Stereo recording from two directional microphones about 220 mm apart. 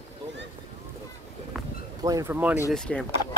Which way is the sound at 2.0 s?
15° right (ahead or behind).